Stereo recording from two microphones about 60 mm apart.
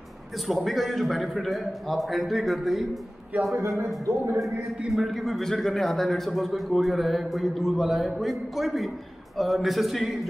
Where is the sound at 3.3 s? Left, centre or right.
Right.